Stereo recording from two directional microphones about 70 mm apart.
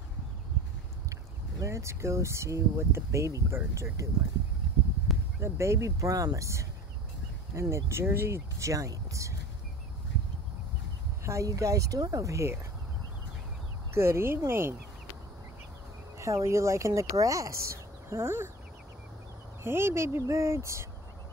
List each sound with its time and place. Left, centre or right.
1.6 s speech: right
5.1 s a sound: centre
5.4 s speech: right
7.7 s speech: right
11.2 s speech: right
13.9 s speech: right
16.2 s speech: right
18.1 s speech: right
19.6 s speech: right